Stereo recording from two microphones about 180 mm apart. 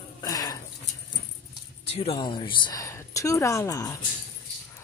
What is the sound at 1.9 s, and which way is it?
Speech, 30° left (ahead or behind).